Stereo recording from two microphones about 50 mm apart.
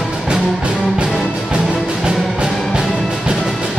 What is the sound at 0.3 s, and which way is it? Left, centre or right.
Music, right.